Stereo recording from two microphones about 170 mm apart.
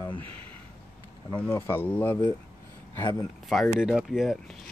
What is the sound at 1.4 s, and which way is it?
Speech, 15° left (ahead or behind).